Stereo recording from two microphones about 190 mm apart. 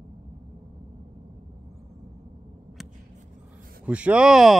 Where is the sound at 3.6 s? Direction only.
50° right (ahead or behind).